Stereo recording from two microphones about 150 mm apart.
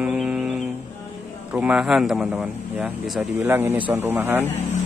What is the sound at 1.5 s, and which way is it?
Speech, 5° right (ahead or behind).